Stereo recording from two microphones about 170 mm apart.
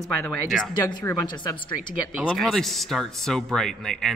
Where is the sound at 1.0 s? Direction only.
15° left (ahead or behind).